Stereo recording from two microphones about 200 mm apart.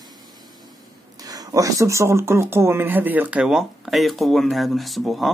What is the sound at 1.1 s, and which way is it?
Speech, 20° right (ahead or behind).